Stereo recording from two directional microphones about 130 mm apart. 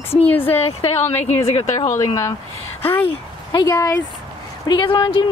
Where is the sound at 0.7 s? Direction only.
50° left (ahead or behind).